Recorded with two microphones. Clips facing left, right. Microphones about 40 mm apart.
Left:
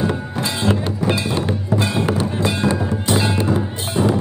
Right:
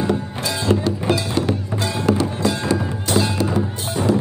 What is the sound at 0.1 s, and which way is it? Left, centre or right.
Music, left.